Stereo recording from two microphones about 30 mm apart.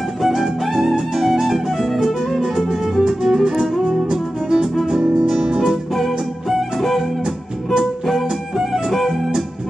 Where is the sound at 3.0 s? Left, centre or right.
Right.